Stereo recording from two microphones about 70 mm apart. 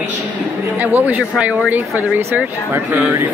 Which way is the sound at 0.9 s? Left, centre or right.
Right.